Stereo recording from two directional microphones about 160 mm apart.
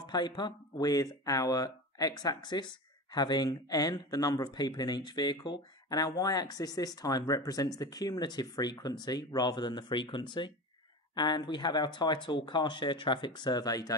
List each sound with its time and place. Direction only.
0.0 s speech: 25° left (ahead or behind)